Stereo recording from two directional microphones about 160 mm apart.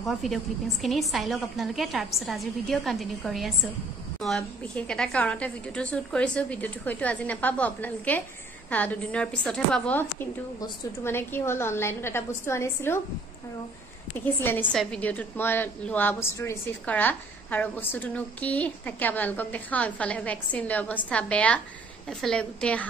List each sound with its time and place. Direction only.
0.0 s a woman's voice: centre (ahead or behind); by 13.0 s 15° left (ahead or behind)
14.1 s a woman's voice: 15° left (ahead or behind)